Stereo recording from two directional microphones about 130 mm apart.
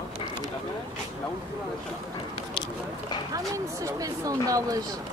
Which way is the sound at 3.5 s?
25° right (ahead or behind).